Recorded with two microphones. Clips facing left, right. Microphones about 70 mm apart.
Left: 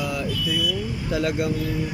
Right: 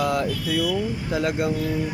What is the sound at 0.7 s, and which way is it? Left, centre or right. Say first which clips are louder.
Speech: right 2 dB; right.